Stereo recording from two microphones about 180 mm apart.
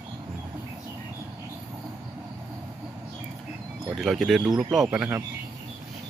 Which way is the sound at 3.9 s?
Centre (ahead or behind).